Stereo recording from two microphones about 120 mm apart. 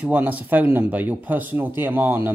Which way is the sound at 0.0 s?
10° right (ahead or behind).